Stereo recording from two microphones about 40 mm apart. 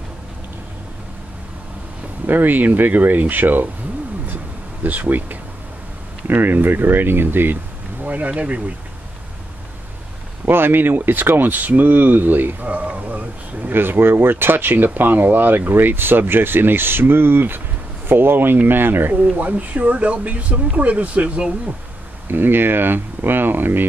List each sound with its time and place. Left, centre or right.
2.2 s speech: right
4.8 s speech: right
6.2 s speech: right
8.0 s speech: right
10.5 s speech: right
13.7 s speech: right
19.5 s speech: right
22.3 s speech: right